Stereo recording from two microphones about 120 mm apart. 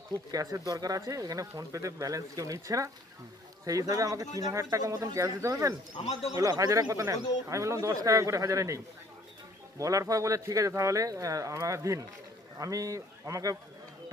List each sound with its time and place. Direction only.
0.3 s speech: 30° right (ahead or behind)
3.9 s speech: 30° right (ahead or behind)